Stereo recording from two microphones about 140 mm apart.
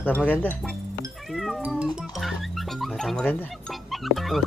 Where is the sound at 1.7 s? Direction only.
Centre (ahead or behind).